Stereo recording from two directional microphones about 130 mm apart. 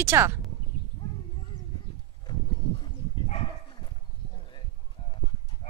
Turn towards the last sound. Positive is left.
turn(degrees=55)  # may be behind; listen again after turning